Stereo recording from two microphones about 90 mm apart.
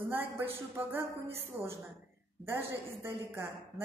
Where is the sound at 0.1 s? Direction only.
25° right (ahead or behind).